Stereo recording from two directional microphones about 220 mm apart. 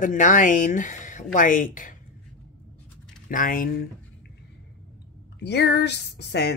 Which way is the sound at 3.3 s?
40° left (ahead or behind).